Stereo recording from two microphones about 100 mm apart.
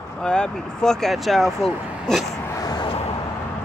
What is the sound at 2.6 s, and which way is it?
Vehicle, 40° left (ahead or behind).